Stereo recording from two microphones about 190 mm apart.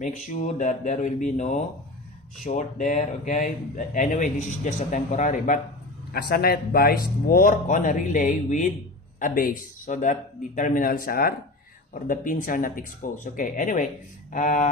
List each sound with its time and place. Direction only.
0.0 s speech: 40° left (ahead or behind)
6.1 s speech: 55° left (ahead or behind)